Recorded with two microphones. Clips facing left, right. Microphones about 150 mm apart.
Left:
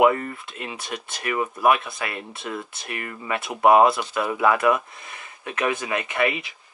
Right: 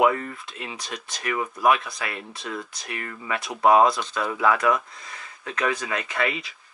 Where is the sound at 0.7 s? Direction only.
55° left (ahead or behind).